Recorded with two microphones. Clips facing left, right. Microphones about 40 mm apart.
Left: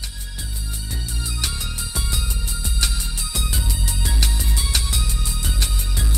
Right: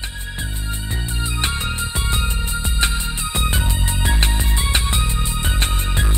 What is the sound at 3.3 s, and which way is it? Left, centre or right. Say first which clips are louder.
Music: right 6 dB; right.